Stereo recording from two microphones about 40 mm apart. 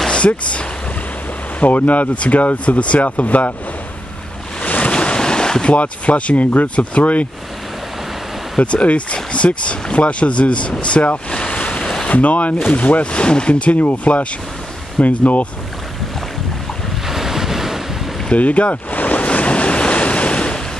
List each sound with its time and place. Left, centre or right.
1.6 s speech: left
4.6 s waves: left
4.9 s ocean: left
5.8 s speech: left
8.5 s speech: left
11.2 s waves: left
12.1 s speech: left
17.1 s waves: centre
18.3 s speech: left
19.2 s waves: left